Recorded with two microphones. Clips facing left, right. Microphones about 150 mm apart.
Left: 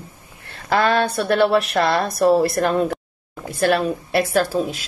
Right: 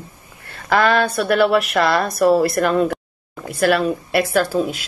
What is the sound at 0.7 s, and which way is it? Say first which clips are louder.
A woman's voice: right 2 dB; 25° left (ahead or behind).